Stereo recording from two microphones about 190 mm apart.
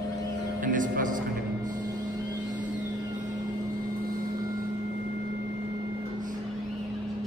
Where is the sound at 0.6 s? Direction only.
45° right (ahead or behind).